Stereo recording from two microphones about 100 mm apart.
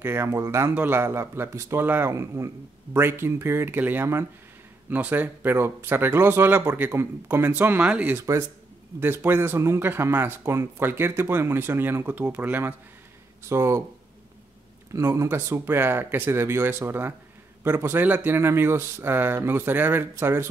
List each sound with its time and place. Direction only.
0.0 s speech: 25° right (ahead or behind)
8.2 s speech: 30° right (ahead or behind)
14.9 s speech: 30° right (ahead or behind)